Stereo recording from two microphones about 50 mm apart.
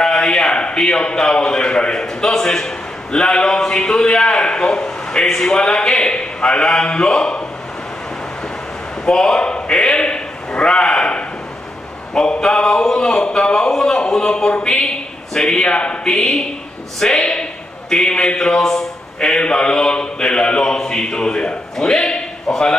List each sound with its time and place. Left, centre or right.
0.0 s a man's voice: centre
9.0 s a man's voice: centre
13.5 s a sound: centre
14.9 s speech: centre
16.1 s a man's voice: centre
17.2 s a sound: centre
18.0 s a man's voice: centre